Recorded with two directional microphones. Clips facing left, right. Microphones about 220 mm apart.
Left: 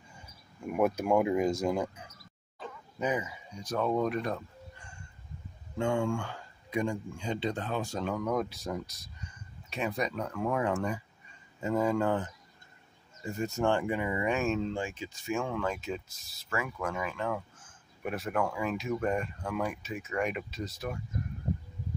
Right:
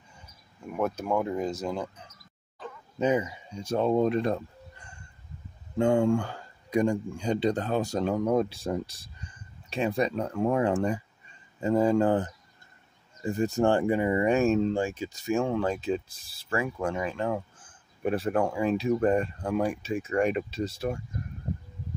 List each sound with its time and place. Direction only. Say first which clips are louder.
0.7 s speech: left 2 dB; 10° left (ahead or behind)
3.0 s speech: right 6 dB; 30° right (ahead or behind)
5.8 s speech: right 7 dB; 40° right (ahead or behind)